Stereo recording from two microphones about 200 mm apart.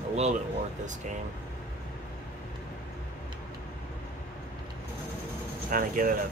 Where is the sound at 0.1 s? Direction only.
35° right (ahead or behind).